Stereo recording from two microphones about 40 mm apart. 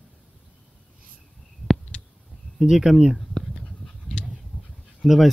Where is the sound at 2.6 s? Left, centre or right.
Centre.